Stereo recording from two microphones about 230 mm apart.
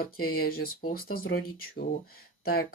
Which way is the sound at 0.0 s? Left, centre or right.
Left.